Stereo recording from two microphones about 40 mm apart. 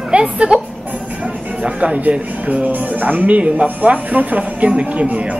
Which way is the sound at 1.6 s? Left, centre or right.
Right.